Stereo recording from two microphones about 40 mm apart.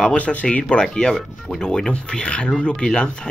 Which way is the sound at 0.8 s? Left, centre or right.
Centre.